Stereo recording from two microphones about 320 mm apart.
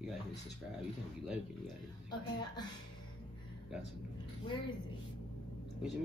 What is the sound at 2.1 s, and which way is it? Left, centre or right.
Speech, centre.